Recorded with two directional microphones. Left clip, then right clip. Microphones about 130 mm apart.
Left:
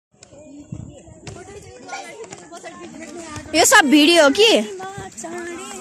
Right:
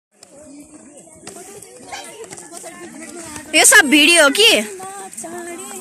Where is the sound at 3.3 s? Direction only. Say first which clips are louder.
Right 2 dB; 25° left (ahead or behind).